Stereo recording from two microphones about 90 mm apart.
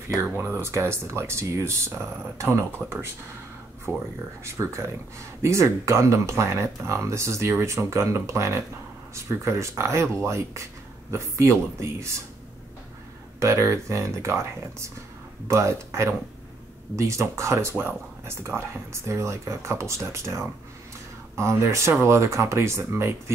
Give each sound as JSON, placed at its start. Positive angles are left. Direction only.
{"t": 0.4, "sound": "speech", "side_deg": -30}
{"t": 2.8, "sound": "speech", "side_deg": -15}
{"t": 4.5, "sound": "speech", "side_deg": -35}
{"t": 13.4, "sound": "speech", "side_deg": -35}